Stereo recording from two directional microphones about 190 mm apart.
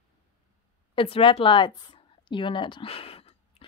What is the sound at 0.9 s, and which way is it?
A woman's voice, 30° left (ahead or behind).